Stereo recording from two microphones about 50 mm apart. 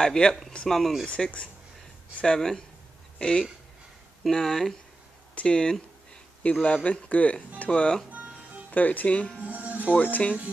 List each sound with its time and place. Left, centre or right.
0.0 s speech: centre
1.0 s speech: left
4.3 s speech: centre
5.3 s speech: left
9.4 s speech: right
9.9 s speech: left